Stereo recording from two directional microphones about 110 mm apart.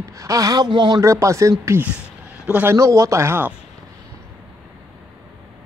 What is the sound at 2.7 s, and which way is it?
Speech, 30° right (ahead or behind).